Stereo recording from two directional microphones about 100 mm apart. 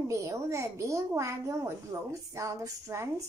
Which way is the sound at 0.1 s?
30° right (ahead or behind).